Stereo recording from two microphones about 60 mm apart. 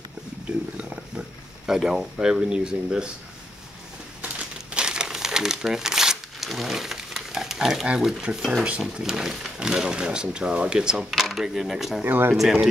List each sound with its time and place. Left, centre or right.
0.5 s a sound: centre
1.7 s speech: centre
4.2 s crumpling: centre
8.3 s speech: centre
11.1 s speech: centre
12.0 s speech: right
12.4 s speech: centre